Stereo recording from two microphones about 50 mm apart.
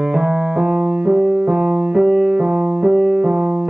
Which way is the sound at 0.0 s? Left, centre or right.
Centre.